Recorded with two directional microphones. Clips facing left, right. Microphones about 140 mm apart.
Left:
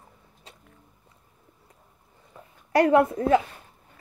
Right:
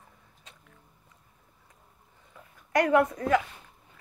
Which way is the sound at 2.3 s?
30° left (ahead or behind).